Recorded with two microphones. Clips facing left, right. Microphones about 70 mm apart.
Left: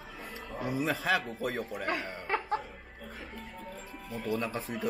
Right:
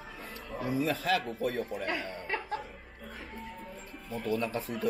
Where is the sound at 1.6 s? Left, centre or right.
Centre.